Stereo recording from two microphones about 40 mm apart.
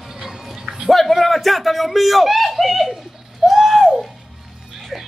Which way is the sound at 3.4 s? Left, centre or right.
Centre.